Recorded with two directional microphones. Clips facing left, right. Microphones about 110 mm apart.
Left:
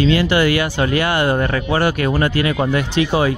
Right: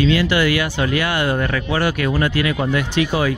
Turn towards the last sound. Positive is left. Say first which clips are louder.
# left 2 dB
turn(degrees=30)  # may be behind; listen again after turning